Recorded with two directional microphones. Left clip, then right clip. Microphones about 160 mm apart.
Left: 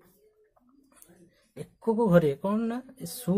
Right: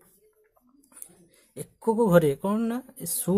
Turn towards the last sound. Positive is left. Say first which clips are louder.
# right 3 dB
turn(degrees=-35)  # may be behind; listen again after turning